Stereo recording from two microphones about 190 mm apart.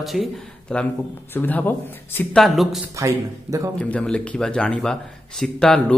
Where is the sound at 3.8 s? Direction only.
5° left (ahead or behind).